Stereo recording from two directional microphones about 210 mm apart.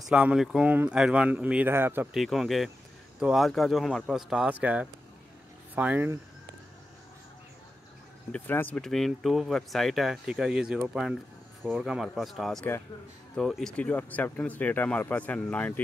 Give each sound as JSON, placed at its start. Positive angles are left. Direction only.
{"t": 0.1, "sound": "speech", "side_deg": -5}
{"t": 2.2, "sound": "speech", "side_deg": 0}
{"t": 8.3, "sound": "speech", "side_deg": 10}